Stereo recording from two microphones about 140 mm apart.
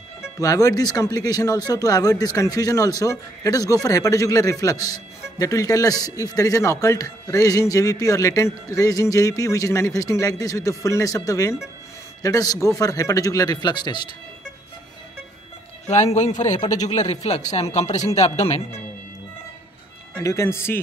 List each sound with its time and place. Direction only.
0.4 s speech: 25° left (ahead or behind)
15.9 s a man's voice: 55° left (ahead or behind)
16.6 s speech: 25° left (ahead or behind)
16.9 s speech: 50° left (ahead or behind)
20.2 s speech: 20° left (ahead or behind)